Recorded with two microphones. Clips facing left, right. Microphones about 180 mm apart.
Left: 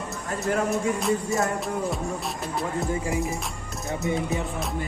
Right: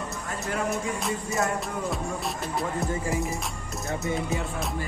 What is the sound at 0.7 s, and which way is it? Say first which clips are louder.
Speech: left 5 dB; centre (ahead or behind).